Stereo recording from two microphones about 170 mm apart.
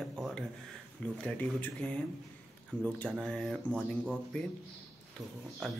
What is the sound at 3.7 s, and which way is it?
Speech, 10° right (ahead or behind).